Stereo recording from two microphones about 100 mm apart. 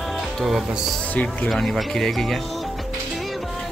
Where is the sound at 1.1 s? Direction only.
15° left (ahead or behind).